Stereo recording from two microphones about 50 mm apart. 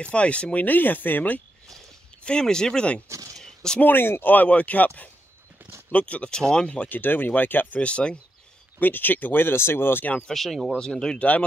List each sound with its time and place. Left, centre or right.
0.0 s speech: left
0.7 s speech: left
2.2 s speech: centre
3.3 s a sound: centre
3.8 s speech: left; by 6.9 s centre
6.9 s speech: left
7.8 s speech: left
8.7 s speech: left
10.3 s speech: centre
10.8 s speech: centre
11.1 s speech: left